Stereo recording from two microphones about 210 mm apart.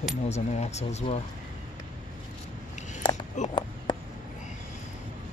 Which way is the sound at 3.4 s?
35° left (ahead or behind).